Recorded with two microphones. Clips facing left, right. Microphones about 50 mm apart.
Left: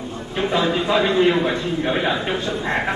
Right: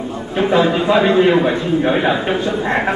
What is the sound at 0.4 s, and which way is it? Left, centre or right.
A man's voice, centre.